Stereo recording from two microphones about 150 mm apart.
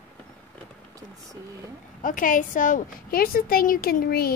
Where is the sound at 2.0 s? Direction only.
65° left (ahead or behind).